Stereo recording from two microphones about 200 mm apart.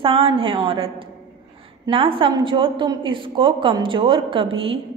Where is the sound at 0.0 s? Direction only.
25° right (ahead or behind).